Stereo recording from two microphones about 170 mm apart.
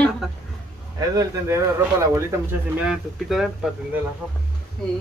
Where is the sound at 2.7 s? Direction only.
5° right (ahead or behind).